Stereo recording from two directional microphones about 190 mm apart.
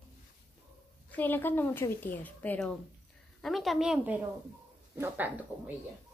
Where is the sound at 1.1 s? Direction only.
10° left (ahead or behind); by 5.3 s 10° right (ahead or behind).